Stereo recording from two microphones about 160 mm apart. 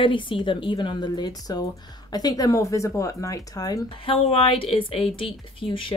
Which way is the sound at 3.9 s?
35° left (ahead or behind).